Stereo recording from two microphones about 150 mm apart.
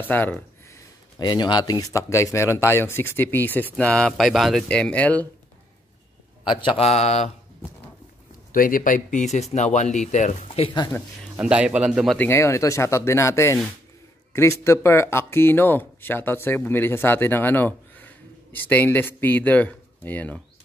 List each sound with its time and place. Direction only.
0.0 s speech: 10° left (ahead or behind)
1.1 s speech: 30° left (ahead or behind); by 5.2 s 10° left (ahead or behind)
6.6 s speech: 35° left (ahead or behind)
8.5 s speech: 65° left (ahead or behind); by 10.7 s 45° left (ahead or behind)
11.3 s a man's voice: 5° right (ahead or behind)
12.2 s speech: 15° left (ahead or behind)